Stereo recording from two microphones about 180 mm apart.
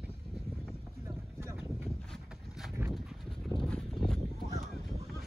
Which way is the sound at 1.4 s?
15° right (ahead or behind).